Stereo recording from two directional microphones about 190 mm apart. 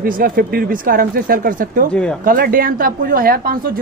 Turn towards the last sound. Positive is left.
turn(degrees=-50)  # may be behind; listen again after turning